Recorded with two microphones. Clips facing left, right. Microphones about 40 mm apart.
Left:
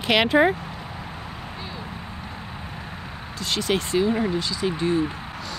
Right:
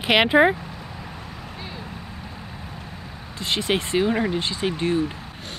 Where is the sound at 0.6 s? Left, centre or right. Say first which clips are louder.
Left 2 dB; centre.